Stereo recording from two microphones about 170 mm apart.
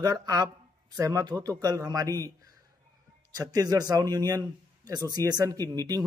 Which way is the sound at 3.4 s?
20° right (ahead or behind).